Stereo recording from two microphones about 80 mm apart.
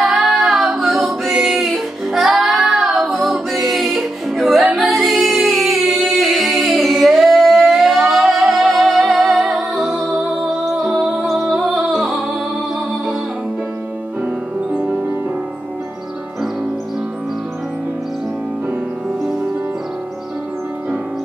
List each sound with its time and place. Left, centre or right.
0.0 s singing: centre
4.9 s a capella: centre
10.8 s music: centre
14.2 s music: centre